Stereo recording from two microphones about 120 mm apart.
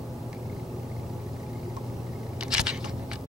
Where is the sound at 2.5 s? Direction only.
5° right (ahead or behind).